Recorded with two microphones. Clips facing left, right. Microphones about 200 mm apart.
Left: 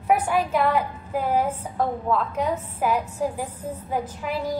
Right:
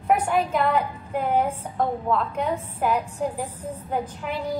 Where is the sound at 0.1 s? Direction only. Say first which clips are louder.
Even; 5° left (ahead or behind).